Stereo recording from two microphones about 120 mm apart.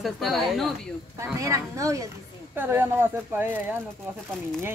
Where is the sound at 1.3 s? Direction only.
25° right (ahead or behind).